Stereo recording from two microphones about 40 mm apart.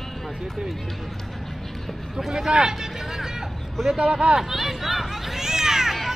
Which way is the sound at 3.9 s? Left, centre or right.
Right.